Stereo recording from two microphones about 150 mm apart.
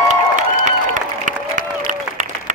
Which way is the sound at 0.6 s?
60° right (ahead or behind).